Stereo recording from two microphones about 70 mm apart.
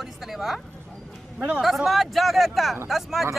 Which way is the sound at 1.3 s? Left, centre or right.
Centre.